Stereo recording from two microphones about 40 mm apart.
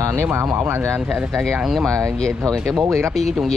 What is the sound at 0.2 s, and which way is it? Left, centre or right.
Speech, right.